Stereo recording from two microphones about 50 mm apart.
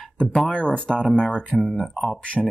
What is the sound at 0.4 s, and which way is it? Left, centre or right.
Speech, centre.